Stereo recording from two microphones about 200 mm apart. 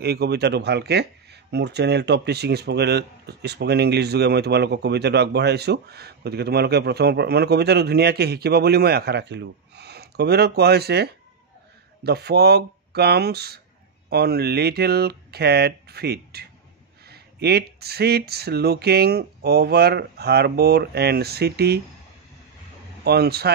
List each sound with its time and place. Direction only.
0.0 s speech: 55° right (ahead or behind)
23.0 s speech: 50° right (ahead or behind)